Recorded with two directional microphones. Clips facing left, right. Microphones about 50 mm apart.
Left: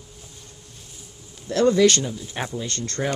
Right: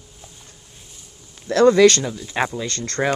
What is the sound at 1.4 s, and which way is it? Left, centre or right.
Speech, right.